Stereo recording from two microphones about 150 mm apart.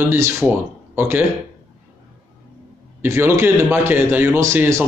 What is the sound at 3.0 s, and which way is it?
Mantra, 15° right (ahead or behind).